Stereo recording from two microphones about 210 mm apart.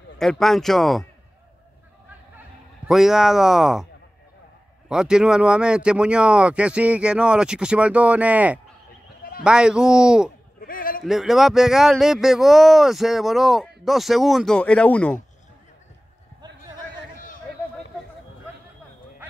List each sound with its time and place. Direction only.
0.2 s speech: centre (ahead or behind)
2.9 s speech: centre (ahead or behind)
4.8 s speech: 5° right (ahead or behind)
10.6 s a sound: 40° left (ahead or behind)
11.1 s speech: centre (ahead or behind)